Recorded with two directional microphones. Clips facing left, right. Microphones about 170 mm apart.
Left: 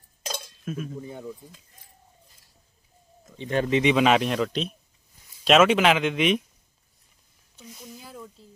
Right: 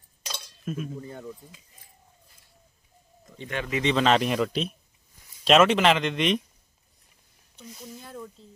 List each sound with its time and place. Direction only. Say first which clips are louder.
0.2 s cutlery: left 6 dB; 50° left (ahead or behind)
0.7 s speech: even; centre (ahead or behind)
1.0 s speech: left 2 dB; 10° left (ahead or behind)
3.4 s speech: left 7 dB; 40° left (ahead or behind)
3.8 s speech: even; 10° left (ahead or behind)
4.2 s speech: even; centre (ahead or behind)
7.5 s speech: right 1 dB; 5° left (ahead or behind)